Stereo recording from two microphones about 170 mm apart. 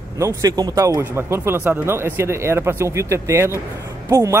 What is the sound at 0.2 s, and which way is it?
Speech, 20° right (ahead or behind).